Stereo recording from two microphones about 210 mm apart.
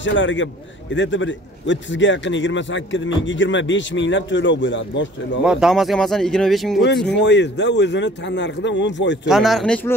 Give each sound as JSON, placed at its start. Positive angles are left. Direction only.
{"t": 0.0, "sound": "a man's voice", "side_deg": 60}
{"t": 5.4, "sound": "speech", "side_deg": -5}
{"t": 7.1, "sound": "a man's voice", "side_deg": 55}
{"t": 9.3, "sound": "speech", "side_deg": 0}